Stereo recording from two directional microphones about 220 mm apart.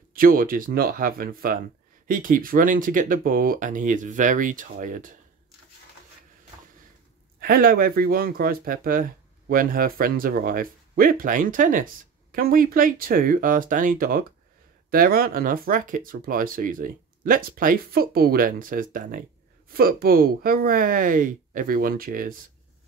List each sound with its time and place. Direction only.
0.1 s speech: 40° right (ahead or behind)
7.3 s speech: 45° right (ahead or behind)